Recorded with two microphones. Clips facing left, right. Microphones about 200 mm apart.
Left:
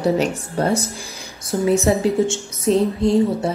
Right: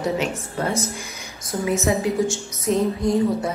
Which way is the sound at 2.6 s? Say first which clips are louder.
Left 4 dB; 30° left (ahead or behind).